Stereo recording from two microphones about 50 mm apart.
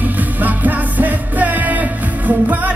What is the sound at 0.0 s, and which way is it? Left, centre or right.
Music, right.